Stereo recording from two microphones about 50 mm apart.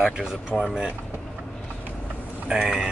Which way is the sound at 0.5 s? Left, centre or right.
Centre.